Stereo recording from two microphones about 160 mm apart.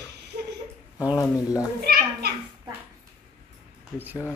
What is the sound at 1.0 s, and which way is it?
Speech, 20° left (ahead or behind).